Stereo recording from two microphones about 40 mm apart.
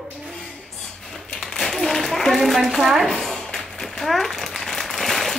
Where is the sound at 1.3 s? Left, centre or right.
Centre.